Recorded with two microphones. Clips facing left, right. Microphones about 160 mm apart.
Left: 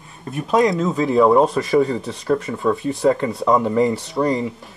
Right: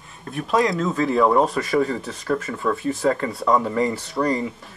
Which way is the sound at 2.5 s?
20° left (ahead or behind).